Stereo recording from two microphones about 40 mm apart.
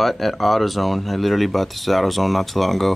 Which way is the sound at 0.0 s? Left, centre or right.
Centre.